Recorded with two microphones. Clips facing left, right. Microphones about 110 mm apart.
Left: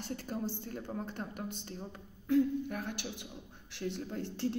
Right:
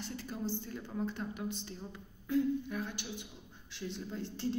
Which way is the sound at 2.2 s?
65° left (ahead or behind).